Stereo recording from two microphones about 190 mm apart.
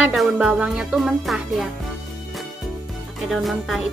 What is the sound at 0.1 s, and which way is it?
Music, centre (ahead or behind).